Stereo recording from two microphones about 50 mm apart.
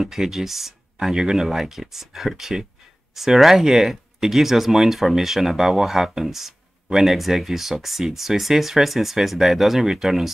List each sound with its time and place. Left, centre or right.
0.0 s speech: centre